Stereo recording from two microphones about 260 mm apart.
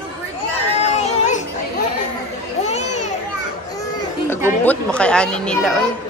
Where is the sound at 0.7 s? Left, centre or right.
Left.